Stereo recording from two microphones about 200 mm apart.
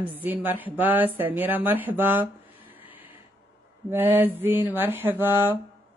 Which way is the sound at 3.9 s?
10° right (ahead or behind).